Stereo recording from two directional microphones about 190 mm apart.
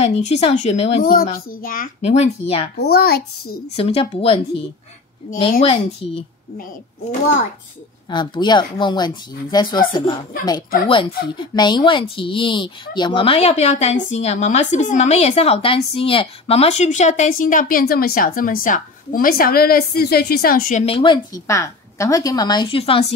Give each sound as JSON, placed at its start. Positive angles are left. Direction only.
{"t": 0.0, "sound": "speech", "side_deg": 35}
{"t": 1.3, "sound": "a woman's voice", "side_deg": 50}
{"t": 2.0, "sound": "speech", "side_deg": 35}
{"t": 2.8, "sound": "speech", "side_deg": 55}
{"t": 3.7, "sound": "speech", "side_deg": 30}
{"t": 8.1, "sound": "a woman's voice", "side_deg": 25}
{"t": 20.8, "sound": "a woman's voice", "side_deg": 25}